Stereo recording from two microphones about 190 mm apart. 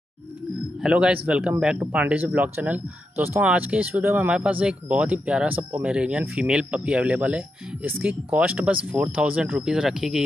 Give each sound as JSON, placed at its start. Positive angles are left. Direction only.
{"t": 0.8, "sound": "speech", "side_deg": -5}